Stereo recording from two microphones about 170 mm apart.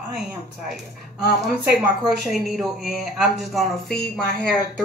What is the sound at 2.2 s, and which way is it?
Speech, centre (ahead or behind).